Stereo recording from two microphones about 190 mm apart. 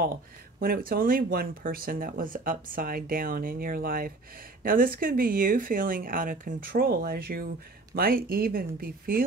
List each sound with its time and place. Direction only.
0.6 s speech: 50° right (ahead or behind)